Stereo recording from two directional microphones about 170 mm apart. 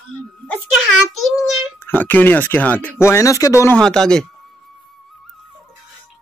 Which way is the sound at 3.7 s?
5° left (ahead or behind).